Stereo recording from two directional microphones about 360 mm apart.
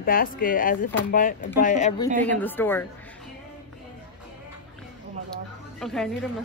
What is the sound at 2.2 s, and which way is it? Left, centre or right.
Speech, centre.